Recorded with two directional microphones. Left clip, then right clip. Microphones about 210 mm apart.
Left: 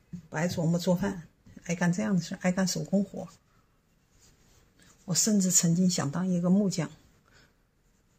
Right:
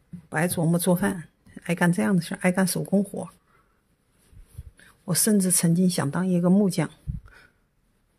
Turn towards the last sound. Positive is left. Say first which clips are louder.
# right 11 dB
turn(degrees=-30)  # may be behind; listen again after turning